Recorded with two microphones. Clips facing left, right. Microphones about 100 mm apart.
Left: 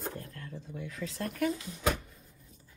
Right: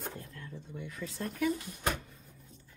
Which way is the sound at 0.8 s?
90° left.